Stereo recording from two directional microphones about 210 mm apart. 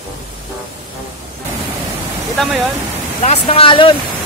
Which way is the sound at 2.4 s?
5° left (ahead or behind).